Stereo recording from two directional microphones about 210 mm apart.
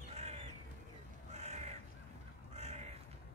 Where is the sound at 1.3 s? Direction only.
30° right (ahead or behind).